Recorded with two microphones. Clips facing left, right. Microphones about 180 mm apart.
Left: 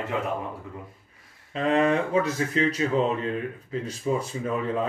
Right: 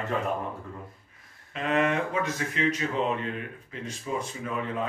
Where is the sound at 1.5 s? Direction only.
35° left (ahead or behind).